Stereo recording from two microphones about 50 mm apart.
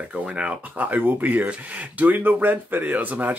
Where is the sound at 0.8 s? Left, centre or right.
Right.